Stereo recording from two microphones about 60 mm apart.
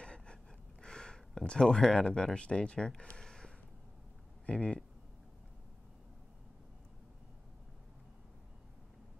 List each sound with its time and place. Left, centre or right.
0.0 s gasp: centre
0.8 s speech: centre